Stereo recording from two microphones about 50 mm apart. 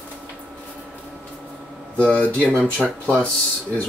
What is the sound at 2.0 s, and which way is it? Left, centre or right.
Speech, left.